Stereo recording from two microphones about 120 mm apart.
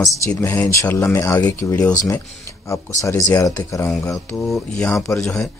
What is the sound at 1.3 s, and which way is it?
Speech, 10° left (ahead or behind).